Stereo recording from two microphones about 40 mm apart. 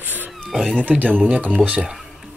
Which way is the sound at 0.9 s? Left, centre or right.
Right.